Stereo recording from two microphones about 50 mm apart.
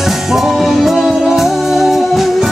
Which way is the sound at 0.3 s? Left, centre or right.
Centre.